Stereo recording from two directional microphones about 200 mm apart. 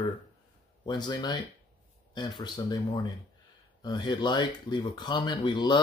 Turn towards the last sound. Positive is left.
turn(degrees=20)  # may be behind; listen again after turning